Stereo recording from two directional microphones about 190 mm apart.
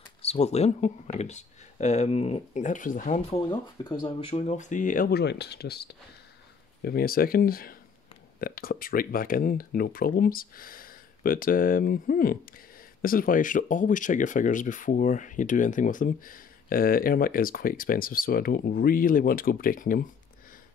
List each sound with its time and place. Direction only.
0.2 s speech: 35° left (ahead or behind)